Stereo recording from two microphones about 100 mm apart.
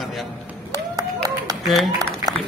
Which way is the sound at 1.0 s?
40° right (ahead or behind).